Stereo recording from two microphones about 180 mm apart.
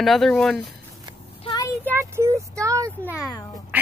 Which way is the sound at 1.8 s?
15° right (ahead or behind).